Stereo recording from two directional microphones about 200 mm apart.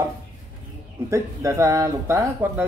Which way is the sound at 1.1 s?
15° right (ahead or behind).